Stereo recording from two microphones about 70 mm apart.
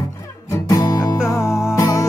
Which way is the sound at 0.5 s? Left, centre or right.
Left.